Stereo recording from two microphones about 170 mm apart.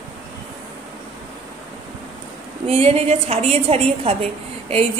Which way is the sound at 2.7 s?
35° right (ahead or behind).